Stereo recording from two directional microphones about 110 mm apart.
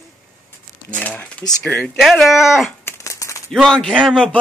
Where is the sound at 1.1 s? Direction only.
10° left (ahead or behind).